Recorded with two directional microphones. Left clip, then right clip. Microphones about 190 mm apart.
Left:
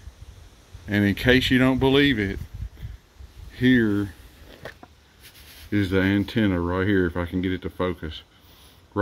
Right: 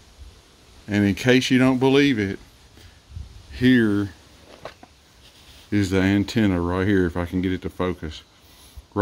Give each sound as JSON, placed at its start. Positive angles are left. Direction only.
{"t": 0.8, "sound": "speech", "side_deg": -5}
{"t": 3.5, "sound": "speech", "side_deg": -15}
{"t": 5.7, "sound": "speech", "side_deg": -20}